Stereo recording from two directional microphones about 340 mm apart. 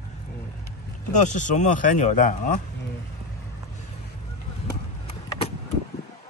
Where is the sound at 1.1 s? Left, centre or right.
Left.